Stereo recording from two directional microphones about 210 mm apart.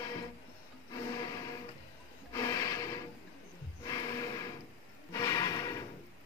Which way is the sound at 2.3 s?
15° left (ahead or behind).